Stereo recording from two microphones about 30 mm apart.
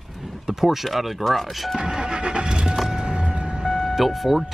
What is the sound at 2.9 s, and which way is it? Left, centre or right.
Music, right.